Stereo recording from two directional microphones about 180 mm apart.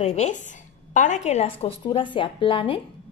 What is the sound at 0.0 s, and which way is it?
A woman's voice, 40° left (ahead or behind).